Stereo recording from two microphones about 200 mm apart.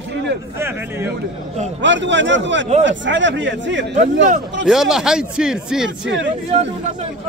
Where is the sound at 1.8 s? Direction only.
65° right (ahead or behind).